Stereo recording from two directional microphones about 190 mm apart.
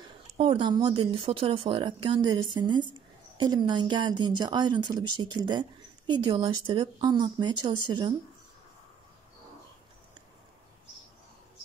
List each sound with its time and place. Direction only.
0.4 s speech: 30° right (ahead or behind)